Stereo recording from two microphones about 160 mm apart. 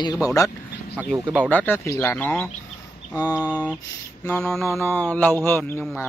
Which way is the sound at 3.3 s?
10° right (ahead or behind).